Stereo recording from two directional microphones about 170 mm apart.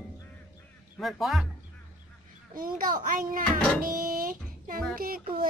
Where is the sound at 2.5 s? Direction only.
55° right (ahead or behind).